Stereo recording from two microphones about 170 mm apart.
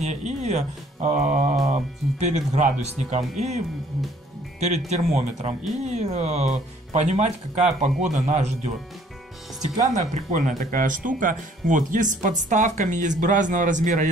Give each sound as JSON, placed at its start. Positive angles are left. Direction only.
{"t": 0.0, "sound": "speech", "side_deg": -40}
{"t": 9.9, "sound": "speech", "side_deg": -45}